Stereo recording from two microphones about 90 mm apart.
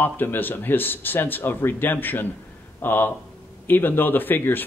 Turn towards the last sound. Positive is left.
turn(degrees=20)  # may be behind; listen again after turning